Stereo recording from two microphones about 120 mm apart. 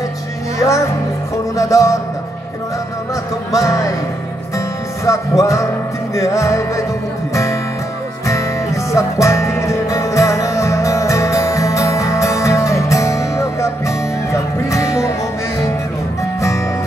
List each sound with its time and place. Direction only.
0.6 s music: 25° left (ahead or behind)
3.5 s music: 25° left (ahead or behind)
5.0 s music: 25° left (ahead or behind)
8.9 s music: 25° left (ahead or behind)